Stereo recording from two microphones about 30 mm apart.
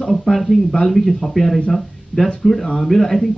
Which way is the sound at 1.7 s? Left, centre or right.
Centre.